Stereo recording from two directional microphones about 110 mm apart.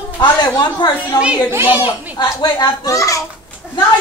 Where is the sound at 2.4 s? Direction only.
45° left (ahead or behind).